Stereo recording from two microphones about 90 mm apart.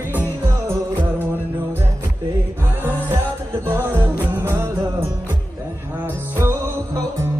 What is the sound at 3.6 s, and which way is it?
Music, 25° right (ahead or behind).